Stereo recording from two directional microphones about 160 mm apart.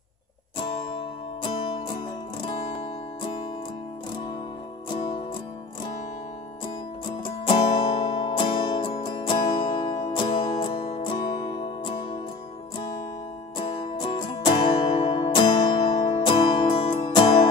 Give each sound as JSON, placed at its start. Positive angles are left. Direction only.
{"t": 7.2, "sound": "music", "side_deg": 30}
{"t": 13.6, "sound": "music", "side_deg": 30}